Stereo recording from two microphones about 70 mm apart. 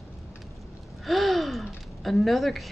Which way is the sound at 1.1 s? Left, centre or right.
Centre.